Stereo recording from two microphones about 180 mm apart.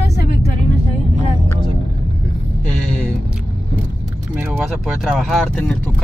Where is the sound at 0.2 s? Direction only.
60° left (ahead or behind).